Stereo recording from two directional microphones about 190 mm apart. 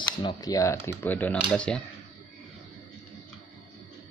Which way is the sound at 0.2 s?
20° left (ahead or behind).